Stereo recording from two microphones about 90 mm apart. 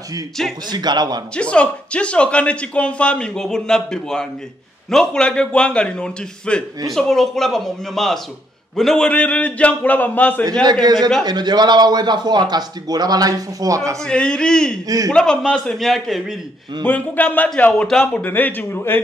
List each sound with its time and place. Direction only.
0.7 s a man's voice: 50° right (ahead or behind)
1.3 s a man's voice: 10° left (ahead or behind)
10.6 s a man's voice: 55° right (ahead or behind); by 13.9 s 35° right (ahead or behind)
14.0 s a man's voice: 10° left (ahead or behind)
16.8 s a man's voice: 20° left (ahead or behind)